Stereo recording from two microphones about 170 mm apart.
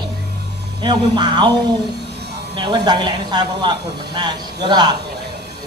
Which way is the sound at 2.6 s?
25° right (ahead or behind).